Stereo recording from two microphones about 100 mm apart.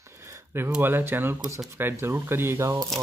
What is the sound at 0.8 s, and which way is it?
Speech, 20° right (ahead or behind).